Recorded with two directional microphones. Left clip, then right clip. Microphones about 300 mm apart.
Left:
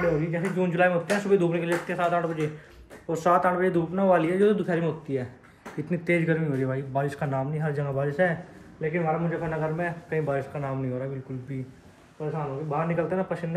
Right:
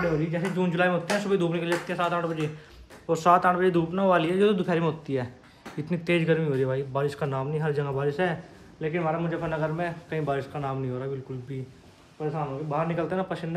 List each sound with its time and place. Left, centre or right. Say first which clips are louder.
0.0 s speech: left 1 dB; centre
4.6 s a man's voice: right 1 dB; centre
12.2 s speech: right 1 dB; centre